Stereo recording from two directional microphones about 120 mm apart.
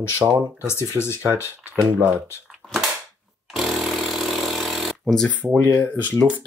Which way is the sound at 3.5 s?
Centre (ahead or behind).